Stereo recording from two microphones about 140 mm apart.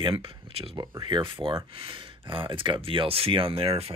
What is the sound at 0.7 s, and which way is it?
Speech, 25° right (ahead or behind).